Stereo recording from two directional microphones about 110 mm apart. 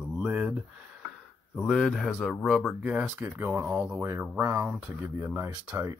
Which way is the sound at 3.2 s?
15° right (ahead or behind).